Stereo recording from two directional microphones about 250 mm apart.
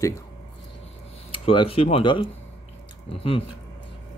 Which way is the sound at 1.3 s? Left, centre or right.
Left.